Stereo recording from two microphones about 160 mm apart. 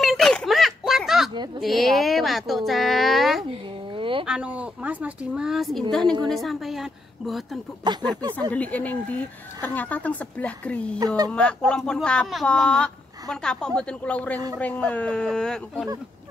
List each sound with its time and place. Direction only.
0.0 s a sound: centre (ahead or behind)
1.6 s speech: centre (ahead or behind)
3.4 s a sound: 35° right (ahead or behind)
4.3 s speech: 5° right (ahead or behind)
7.8 s speech: 25° right (ahead or behind)
8.4 s speech: 10° left (ahead or behind)
11.0 s speech: 25° right (ahead or behind)
11.3 s speech: 5° left (ahead or behind)